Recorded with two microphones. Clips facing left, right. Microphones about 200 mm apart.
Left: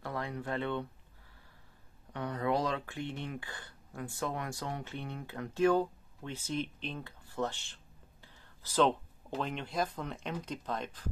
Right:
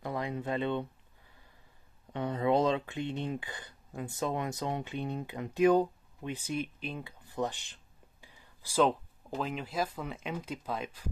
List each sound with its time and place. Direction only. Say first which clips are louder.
0.0 s speech: right 3 dB; 15° right (ahead or behind)
2.1 s speech: right 4 dB; 25° right (ahead or behind); by 11.1 s 10° right (ahead or behind)